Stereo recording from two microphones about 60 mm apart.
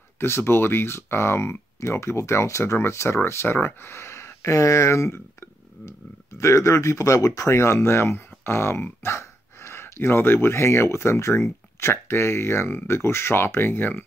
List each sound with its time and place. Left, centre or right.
0.2 s speech: left